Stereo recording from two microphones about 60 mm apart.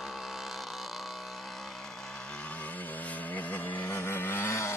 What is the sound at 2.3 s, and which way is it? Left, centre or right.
Vehicle, left.